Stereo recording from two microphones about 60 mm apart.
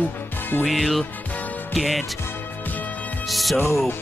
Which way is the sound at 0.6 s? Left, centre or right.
Centre.